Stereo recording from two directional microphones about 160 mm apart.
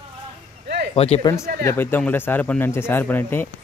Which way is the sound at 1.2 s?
20° left (ahead or behind).